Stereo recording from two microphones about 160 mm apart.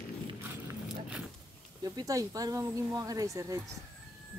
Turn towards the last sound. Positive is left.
turn(degrees=-20)  # may be behind; listen again after turning